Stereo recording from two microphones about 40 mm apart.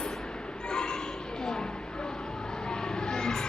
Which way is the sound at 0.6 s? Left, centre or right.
Left.